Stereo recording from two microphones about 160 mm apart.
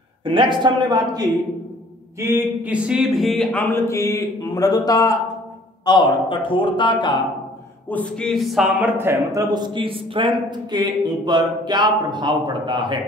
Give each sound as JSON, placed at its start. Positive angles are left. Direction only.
{"t": 0.2, "sound": "a man's voice", "side_deg": -30}
{"t": 3.6, "sound": "speech", "side_deg": 15}
{"t": 7.9, "sound": "a man's voice", "side_deg": 5}